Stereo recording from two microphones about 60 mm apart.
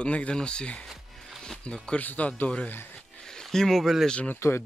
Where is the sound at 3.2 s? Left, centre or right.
Centre.